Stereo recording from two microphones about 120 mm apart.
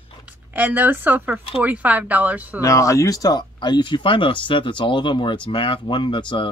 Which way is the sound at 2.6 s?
25° left (ahead or behind).